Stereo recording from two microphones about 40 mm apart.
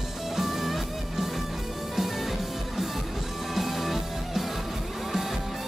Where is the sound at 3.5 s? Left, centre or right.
Centre.